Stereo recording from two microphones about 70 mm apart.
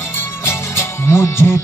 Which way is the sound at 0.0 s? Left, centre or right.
Left.